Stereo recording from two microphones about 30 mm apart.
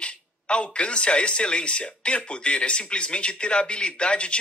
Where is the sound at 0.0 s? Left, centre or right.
Left.